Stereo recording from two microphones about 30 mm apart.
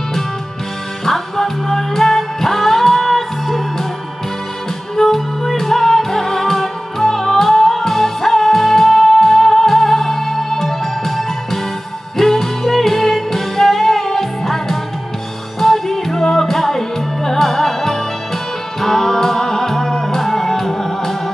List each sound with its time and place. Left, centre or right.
1.0 s music: centre
4.9 s music: centre